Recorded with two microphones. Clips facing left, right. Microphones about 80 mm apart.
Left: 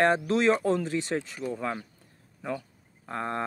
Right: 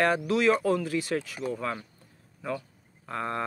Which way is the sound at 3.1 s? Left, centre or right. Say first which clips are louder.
Even; left.